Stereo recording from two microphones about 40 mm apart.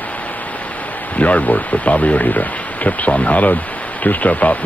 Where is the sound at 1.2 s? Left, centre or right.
Left.